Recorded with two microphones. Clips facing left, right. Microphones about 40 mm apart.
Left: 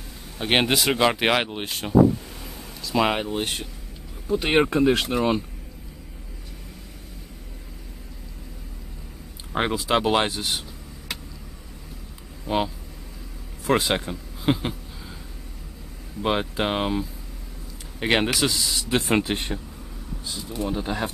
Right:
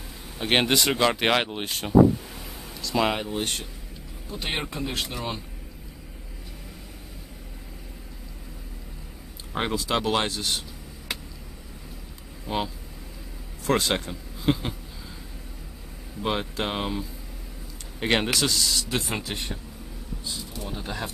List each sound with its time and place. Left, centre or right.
0.4 s speech: centre
2.4 s a sound: centre
3.2 s speech: centre
4.4 s speech: left
4.6 s speech: left
9.5 s speech: centre
12.4 s speech: centre
16.2 s speech: centre
18.0 s speech: centre
19.0 s speech: left
19.3 s speech: left
20.7 s speech: centre